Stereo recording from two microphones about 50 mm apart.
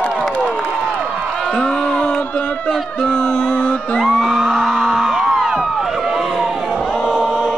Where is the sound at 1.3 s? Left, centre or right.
Centre.